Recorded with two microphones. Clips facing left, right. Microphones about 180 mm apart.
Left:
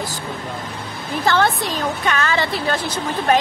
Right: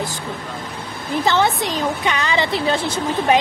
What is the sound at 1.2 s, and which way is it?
A woman's voice, 20° right (ahead or behind).